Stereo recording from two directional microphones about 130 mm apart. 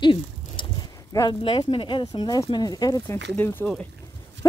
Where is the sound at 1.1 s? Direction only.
30° left (ahead or behind).